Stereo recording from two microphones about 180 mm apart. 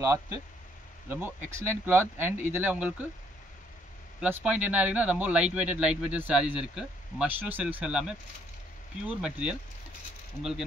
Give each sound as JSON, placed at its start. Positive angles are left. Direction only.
{"t": 0.0, "sound": "speech", "side_deg": -15}
{"t": 4.2, "sound": "speech", "side_deg": -5}